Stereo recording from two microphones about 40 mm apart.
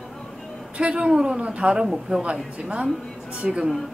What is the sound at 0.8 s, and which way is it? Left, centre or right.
Speech, right.